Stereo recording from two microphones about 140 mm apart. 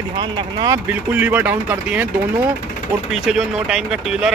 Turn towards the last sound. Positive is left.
turn(degrees=-5)  # may be behind; listen again after turning